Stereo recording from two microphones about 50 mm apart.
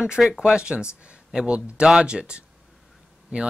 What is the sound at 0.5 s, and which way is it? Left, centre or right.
Speech, centre.